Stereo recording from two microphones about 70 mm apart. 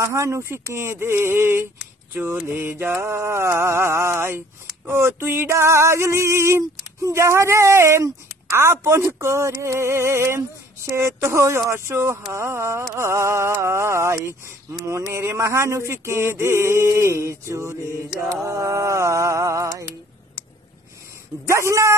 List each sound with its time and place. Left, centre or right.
0.0 s a sound: right
11.0 s speech: right
21.5 s speech: right